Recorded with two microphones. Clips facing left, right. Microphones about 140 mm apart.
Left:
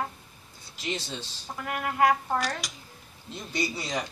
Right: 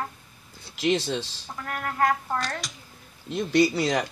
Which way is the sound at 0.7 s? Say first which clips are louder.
Right 10 dB; 80° right.